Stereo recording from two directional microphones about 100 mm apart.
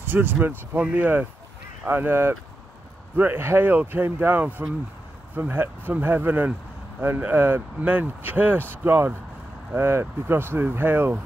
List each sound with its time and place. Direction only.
0.0 s speech: 20° right (ahead or behind)